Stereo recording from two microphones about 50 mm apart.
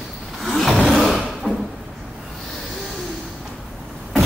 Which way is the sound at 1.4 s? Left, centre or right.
Centre.